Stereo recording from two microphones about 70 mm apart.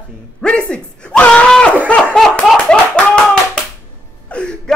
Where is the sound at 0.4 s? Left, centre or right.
Centre.